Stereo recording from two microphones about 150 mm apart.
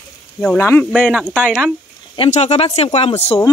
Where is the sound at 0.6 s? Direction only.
15° left (ahead or behind).